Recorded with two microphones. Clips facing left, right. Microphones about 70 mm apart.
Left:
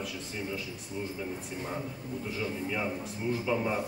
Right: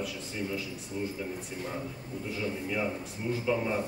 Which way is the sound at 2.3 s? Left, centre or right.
Centre.